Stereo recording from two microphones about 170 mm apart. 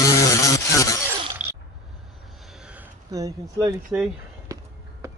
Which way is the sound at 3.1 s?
20° right (ahead or behind).